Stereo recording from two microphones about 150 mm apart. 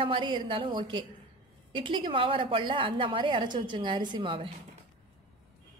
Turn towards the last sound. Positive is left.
turn(degrees=-35)  # may be behind; listen again after turning